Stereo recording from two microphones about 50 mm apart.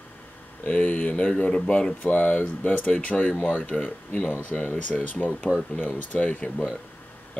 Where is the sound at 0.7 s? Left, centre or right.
Left.